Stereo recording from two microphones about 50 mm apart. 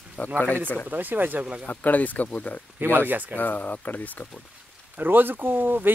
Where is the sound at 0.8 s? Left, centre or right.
Right.